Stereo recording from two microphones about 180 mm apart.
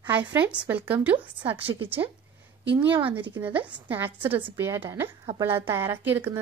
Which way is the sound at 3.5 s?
30° right (ahead or behind).